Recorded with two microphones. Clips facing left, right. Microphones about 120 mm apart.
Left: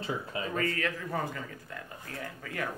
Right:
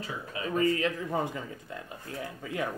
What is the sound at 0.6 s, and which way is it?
Speech, 20° right (ahead or behind).